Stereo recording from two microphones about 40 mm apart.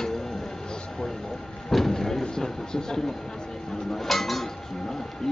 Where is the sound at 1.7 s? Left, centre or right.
Centre.